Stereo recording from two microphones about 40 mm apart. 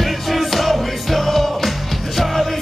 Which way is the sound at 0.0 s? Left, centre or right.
Centre.